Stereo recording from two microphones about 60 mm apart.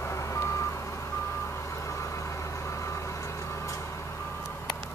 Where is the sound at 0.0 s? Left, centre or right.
Left.